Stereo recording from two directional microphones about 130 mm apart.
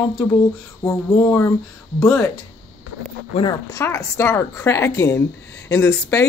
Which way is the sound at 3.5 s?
25° left (ahead or behind).